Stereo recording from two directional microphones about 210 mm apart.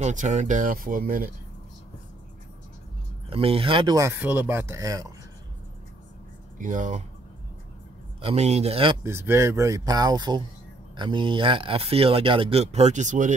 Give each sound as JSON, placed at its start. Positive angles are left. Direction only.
{"t": 0.0, "sound": "speech", "side_deg": -35}
{"t": 3.3, "sound": "speech", "side_deg": -25}
{"t": 6.6, "sound": "speech", "side_deg": -35}
{"t": 8.2, "sound": "speech", "side_deg": -30}
{"t": 9.0, "sound": "speech", "side_deg": -10}